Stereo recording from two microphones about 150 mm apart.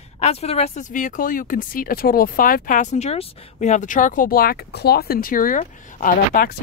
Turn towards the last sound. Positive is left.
turn(degrees=70)  # may be behind; listen again after turning